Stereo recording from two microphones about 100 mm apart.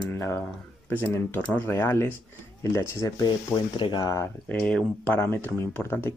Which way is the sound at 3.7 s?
50° left (ahead or behind).